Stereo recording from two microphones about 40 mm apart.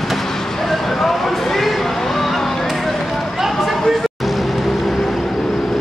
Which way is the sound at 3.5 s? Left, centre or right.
Centre.